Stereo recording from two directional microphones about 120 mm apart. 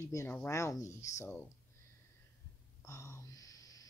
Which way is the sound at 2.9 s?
25° left (ahead or behind).